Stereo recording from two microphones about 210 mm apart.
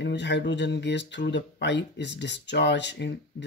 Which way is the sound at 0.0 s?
55° left (ahead or behind).